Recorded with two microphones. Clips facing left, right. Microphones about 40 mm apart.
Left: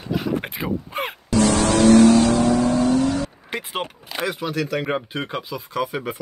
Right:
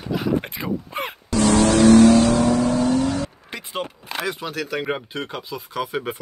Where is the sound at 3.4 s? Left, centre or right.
Left.